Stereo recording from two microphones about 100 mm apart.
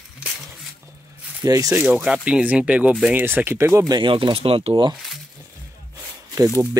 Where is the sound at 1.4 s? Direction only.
35° right (ahead or behind).